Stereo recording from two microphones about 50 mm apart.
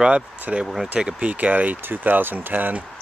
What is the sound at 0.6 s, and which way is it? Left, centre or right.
Speech, centre.